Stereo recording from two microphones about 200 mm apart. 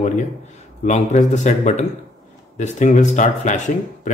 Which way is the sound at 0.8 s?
35° left (ahead or behind).